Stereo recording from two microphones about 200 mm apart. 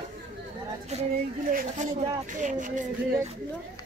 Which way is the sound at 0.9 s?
40° right (ahead or behind).